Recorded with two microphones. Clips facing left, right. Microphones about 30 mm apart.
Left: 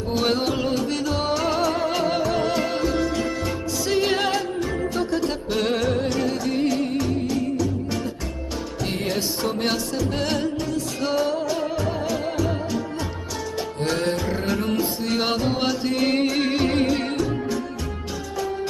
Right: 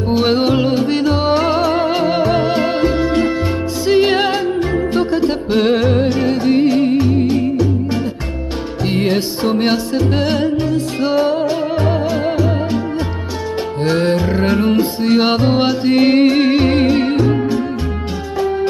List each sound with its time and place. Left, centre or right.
0.1 s music: right
13.8 s music: right